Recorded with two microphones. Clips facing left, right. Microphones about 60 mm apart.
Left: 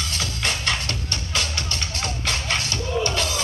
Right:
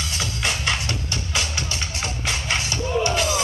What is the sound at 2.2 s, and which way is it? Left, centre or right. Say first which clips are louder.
Music: right 1 dB; centre.